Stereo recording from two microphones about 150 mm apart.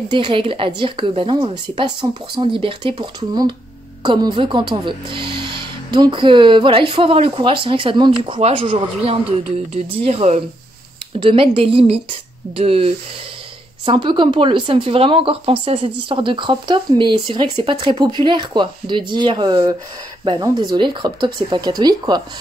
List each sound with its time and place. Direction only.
0.1 s speech: 35° right (ahead or behind)
11.1 s speech: 35° right (ahead or behind)